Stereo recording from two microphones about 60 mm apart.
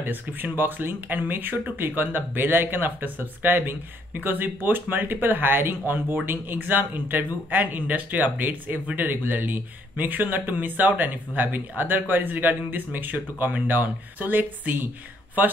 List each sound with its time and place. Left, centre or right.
0.0 s speech: right